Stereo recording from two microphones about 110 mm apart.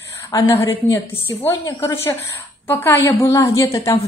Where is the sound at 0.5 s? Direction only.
25° left (ahead or behind).